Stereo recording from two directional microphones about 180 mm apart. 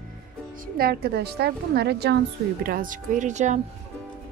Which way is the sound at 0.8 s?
60° right (ahead or behind).